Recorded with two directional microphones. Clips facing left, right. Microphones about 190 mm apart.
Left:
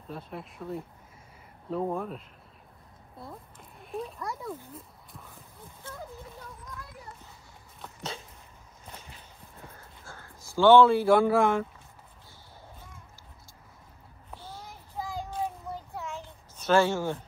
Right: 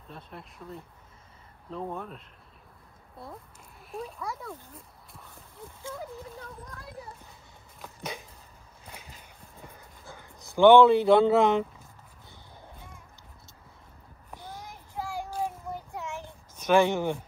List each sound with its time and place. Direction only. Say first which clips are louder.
0.1 s speech: left 5 dB; centre (ahead or behind)
3.8 s speech: left 1 dB; centre (ahead or behind)
7.8 s dog: right 1 dB; 15° right (ahead or behind)
9.7 s a sound: right 2 dB; 15° right (ahead or behind)
14.3 s child singing: right 1 dB; 15° right (ahead or behind)
15.4 s a sound: right 1 dB; 15° right (ahead or behind)